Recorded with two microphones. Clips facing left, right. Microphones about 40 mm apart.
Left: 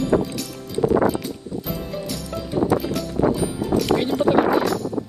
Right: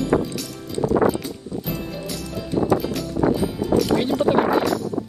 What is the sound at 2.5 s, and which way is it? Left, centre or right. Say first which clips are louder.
Music: even; left.